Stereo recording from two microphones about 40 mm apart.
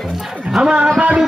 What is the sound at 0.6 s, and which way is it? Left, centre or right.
Speech, centre.